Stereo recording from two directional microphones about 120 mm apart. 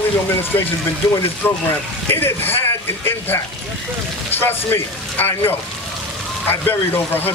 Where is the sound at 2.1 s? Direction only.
20° left (ahead or behind).